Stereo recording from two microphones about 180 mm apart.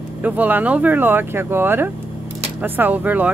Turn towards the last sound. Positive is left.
turn(degrees=-10)  # may be behind; listen again after turning